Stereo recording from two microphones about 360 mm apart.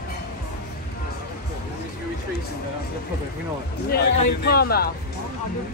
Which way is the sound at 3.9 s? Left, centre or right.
Left.